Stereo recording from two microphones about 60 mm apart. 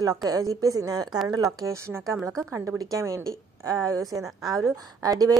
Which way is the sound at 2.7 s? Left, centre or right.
Right.